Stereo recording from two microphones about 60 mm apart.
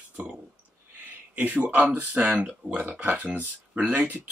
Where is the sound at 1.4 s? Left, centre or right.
Right.